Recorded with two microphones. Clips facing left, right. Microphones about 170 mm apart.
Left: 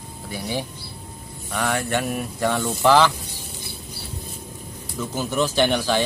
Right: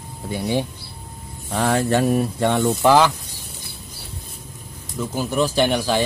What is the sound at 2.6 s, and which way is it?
Speech, 10° right (ahead or behind).